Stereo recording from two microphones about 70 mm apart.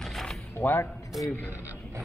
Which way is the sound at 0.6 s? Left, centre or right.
Left.